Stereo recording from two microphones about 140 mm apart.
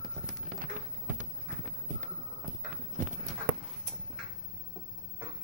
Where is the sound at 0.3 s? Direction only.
65° right (ahead or behind).